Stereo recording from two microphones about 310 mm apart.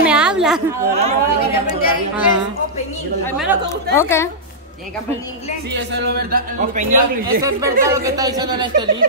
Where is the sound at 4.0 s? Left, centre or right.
Centre.